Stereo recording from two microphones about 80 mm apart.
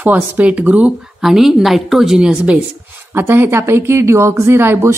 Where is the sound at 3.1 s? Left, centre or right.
Right.